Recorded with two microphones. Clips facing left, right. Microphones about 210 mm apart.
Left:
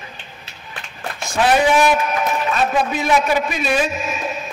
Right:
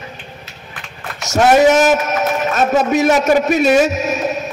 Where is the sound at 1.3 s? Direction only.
45° right (ahead or behind).